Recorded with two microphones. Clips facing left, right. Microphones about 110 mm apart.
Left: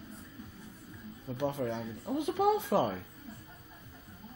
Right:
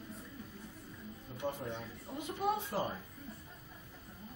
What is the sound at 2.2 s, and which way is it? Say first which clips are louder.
Speech: left 7 dB; 90° left.